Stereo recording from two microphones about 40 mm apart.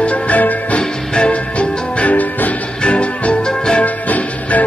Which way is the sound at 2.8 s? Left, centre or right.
Left.